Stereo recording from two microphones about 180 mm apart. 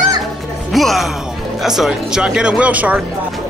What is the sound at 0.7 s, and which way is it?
Speech, centre (ahead or behind).